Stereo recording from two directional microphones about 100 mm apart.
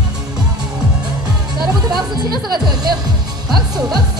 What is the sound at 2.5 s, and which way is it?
Music, 45° right (ahead or behind).